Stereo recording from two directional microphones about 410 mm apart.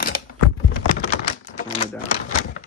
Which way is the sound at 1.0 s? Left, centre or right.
Centre.